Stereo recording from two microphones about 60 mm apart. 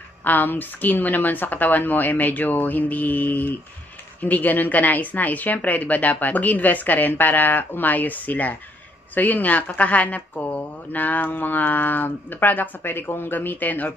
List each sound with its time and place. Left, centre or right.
0.2 s speech: left